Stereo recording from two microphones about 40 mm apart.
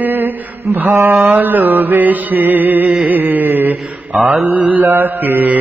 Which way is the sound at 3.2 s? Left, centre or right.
Right.